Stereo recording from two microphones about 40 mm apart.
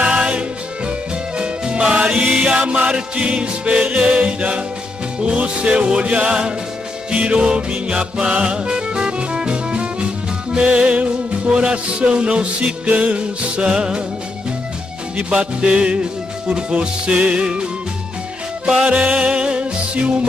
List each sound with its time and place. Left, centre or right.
0.0 s music: right
12.8 s music: right
15.2 s music: right
18.9 s music: right